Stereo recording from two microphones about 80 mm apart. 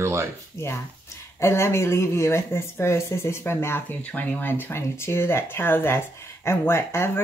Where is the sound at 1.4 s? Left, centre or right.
Left.